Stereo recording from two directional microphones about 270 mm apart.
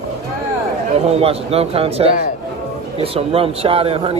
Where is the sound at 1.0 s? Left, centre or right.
Right.